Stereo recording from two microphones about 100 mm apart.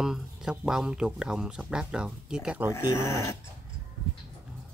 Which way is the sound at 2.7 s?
30° left (ahead or behind).